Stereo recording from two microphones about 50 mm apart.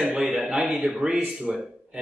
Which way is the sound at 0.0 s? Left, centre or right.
Right.